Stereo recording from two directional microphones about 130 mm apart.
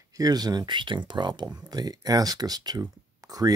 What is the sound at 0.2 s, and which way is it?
Speech, 30° right (ahead or behind).